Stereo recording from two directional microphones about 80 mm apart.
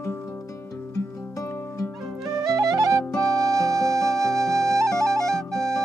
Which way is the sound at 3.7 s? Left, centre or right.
Centre.